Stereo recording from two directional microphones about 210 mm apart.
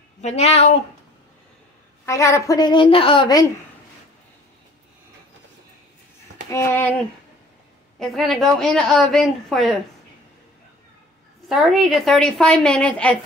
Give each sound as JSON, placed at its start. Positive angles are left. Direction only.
{"t": 0.2, "sound": "speech", "side_deg": 30}
{"t": 2.0, "sound": "a woman's voice", "side_deg": 15}
{"t": 6.5, "sound": "a woman's voice", "side_deg": 10}
{"t": 8.0, "sound": "a woman's voice", "side_deg": 0}
{"t": 11.4, "sound": "a woman's voice", "side_deg": 0}